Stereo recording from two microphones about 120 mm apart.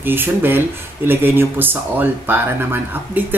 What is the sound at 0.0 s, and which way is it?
Speech, 15° right (ahead or behind).